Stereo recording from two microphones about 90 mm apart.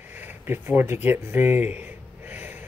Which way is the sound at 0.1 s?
20° right (ahead or behind).